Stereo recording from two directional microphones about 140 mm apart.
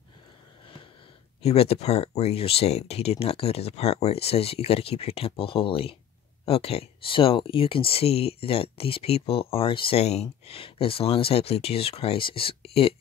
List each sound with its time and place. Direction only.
1.4 s speech: 45° left (ahead or behind)